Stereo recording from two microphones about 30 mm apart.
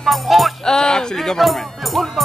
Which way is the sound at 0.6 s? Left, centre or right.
Left.